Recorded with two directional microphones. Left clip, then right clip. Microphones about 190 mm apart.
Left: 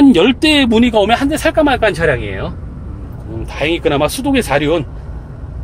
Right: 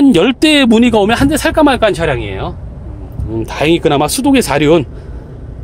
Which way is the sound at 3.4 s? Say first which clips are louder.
Right 3 dB; 40° right (ahead or behind).